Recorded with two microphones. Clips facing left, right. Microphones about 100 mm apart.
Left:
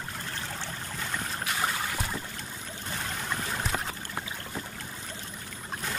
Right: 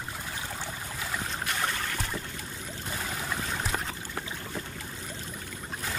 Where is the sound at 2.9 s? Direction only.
Centre (ahead or behind).